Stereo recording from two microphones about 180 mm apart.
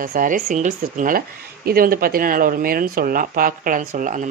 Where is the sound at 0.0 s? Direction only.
50° right (ahead or behind).